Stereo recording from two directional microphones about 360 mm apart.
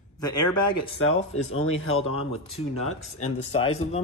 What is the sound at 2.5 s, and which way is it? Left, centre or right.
Speech, centre.